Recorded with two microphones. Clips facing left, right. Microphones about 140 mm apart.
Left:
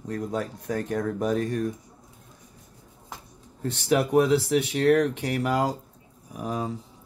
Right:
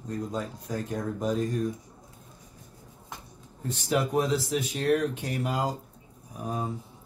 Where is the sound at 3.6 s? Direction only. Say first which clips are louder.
Left 4 dB; 75° left (ahead or behind).